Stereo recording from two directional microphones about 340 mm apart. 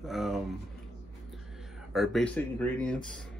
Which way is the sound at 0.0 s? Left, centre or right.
Centre.